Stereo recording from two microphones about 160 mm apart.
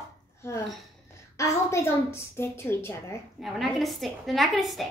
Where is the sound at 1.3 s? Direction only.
20° left (ahead or behind).